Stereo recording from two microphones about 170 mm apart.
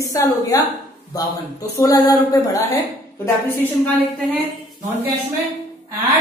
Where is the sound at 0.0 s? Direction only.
20° left (ahead or behind).